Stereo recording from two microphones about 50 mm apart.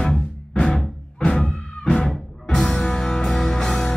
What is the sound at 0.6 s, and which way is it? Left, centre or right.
Music, centre.